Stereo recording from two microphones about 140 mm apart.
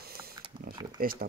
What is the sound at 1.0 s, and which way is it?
Speech, 90° right.